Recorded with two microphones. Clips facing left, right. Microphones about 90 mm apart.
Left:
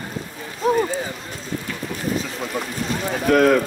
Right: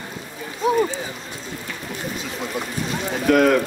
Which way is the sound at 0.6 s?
40° left (ahead or behind).